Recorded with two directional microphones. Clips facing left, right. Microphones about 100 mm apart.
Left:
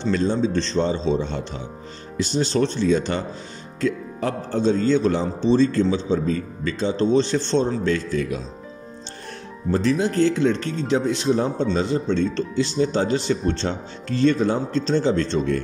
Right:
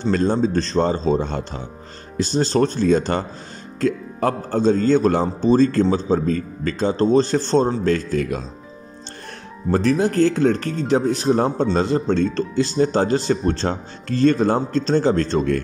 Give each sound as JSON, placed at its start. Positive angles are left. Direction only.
{"t": 0.0, "sound": "speech", "side_deg": -50}
{"t": 9.7, "sound": "speech", "side_deg": -50}
{"t": 11.6, "sound": "speech", "side_deg": -55}